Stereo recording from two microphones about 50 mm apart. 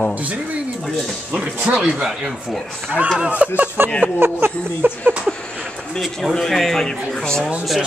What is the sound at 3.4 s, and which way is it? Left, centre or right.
Speech, right.